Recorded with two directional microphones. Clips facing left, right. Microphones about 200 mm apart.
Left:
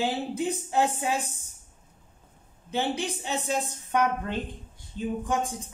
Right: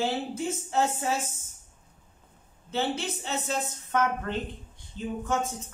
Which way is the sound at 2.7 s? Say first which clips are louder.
Left 1 dB; 15° left (ahead or behind).